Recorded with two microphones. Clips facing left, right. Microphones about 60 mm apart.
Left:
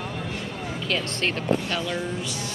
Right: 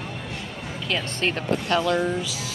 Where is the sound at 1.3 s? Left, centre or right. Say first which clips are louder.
Right 4 dB; right.